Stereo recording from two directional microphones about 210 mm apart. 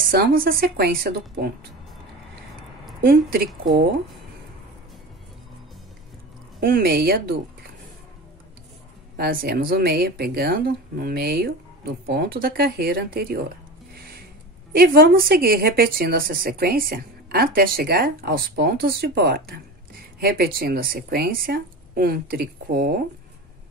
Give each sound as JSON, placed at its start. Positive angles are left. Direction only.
{"t": 0.0, "sound": "a woman's voice", "side_deg": -45}
{"t": 3.0, "sound": "a woman's voice", "side_deg": -45}
{"t": 6.6, "sound": "a woman's voice", "side_deg": -45}
{"t": 9.1, "sound": "a woman's voice", "side_deg": -45}
{"t": 14.7, "sound": "a woman's voice", "side_deg": -45}